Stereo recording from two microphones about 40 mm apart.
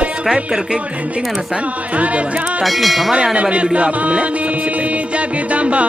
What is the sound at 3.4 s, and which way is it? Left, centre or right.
Music, right.